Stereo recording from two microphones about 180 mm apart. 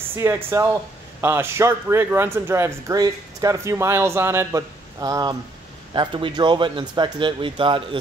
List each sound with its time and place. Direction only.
0.1 s speech: 15° right (ahead or behind)